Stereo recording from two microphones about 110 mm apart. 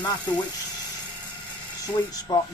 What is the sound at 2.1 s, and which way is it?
Speech, 35° left (ahead or behind).